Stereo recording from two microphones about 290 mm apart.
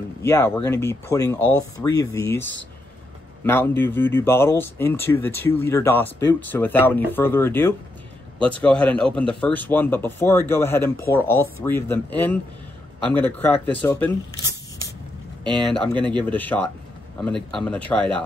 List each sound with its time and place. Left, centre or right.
0.2 s speech: centre
3.4 s a man's voice: centre
16.0 s speech: centre
16.3 s a man's voice: centre